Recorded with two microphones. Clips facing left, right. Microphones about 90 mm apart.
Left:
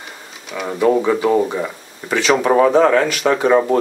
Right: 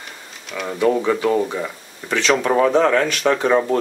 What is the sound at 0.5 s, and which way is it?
Speech, 5° left (ahead or behind).